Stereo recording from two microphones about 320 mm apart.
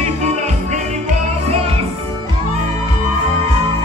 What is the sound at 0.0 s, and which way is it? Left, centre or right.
Music, right.